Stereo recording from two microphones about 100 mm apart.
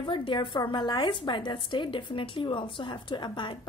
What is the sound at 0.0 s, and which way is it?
A woman's voice, 55° left (ahead or behind).